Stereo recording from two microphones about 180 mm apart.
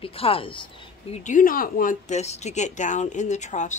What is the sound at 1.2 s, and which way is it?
Speech, 45° left (ahead or behind).